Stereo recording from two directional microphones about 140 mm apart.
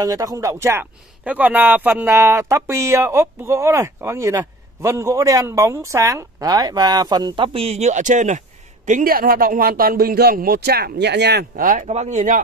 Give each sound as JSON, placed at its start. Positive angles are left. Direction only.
{"t": 0.0, "sound": "speech", "side_deg": -25}
{"t": 11.8, "sound": "speech", "side_deg": -55}